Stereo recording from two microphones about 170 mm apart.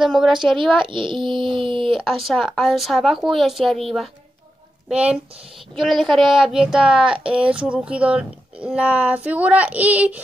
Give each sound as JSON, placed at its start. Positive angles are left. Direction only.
{"t": 0.0, "sound": "a woman's voice", "side_deg": 0}
{"t": 0.8, "sound": "a child's voice", "side_deg": -30}
{"t": 2.0, "sound": "a woman's voice", "side_deg": 0}